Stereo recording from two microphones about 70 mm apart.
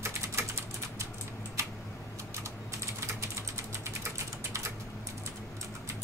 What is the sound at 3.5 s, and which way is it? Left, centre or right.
Typing, right.